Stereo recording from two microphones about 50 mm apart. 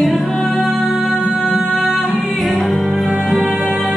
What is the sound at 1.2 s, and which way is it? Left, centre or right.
Music, centre.